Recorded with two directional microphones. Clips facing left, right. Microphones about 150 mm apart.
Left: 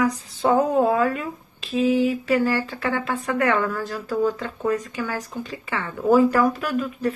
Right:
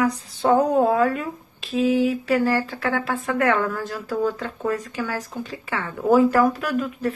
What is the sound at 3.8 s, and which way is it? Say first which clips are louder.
Speech: left 1 dB; centre (ahead or behind).